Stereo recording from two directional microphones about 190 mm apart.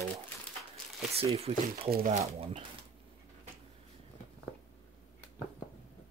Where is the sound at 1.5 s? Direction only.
35° right (ahead or behind).